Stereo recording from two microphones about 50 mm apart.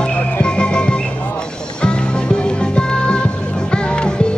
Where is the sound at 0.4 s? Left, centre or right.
Centre.